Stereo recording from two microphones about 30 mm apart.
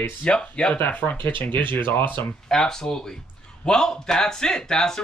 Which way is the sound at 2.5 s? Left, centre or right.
Centre.